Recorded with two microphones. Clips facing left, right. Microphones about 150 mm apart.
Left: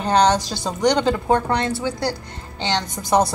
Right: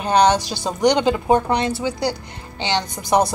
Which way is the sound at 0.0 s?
15° right (ahead or behind).